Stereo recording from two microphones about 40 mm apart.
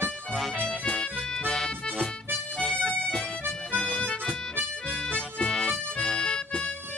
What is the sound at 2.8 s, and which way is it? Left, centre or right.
Music, left.